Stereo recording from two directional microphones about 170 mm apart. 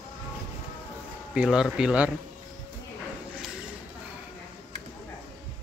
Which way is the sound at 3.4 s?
5° right (ahead or behind).